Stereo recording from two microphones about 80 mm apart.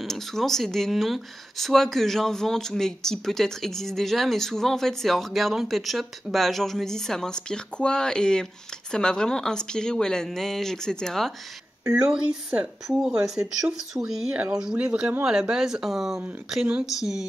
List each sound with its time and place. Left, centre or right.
0.0 s a woman's voice: centre
11.8 s speech: right
12.1 s speech: centre